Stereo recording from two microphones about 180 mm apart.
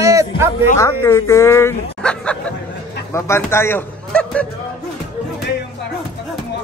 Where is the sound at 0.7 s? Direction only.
15° left (ahead or behind).